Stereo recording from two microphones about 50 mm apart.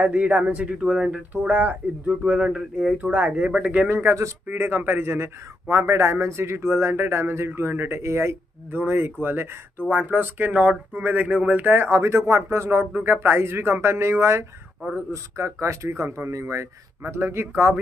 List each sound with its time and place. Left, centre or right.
0.0 s a man's voice: right
1.3 s a man's voice: right
3.0 s a man's voice: right
4.5 s a man's voice: right
8.0 s speech: right
8.7 s speech: right
11.9 s a man's voice: right
12.9 s a man's voice: right
17.0 s a man's voice: right